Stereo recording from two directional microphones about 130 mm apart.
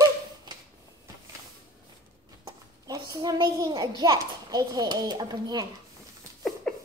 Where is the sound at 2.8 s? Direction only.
30° right (ahead or behind).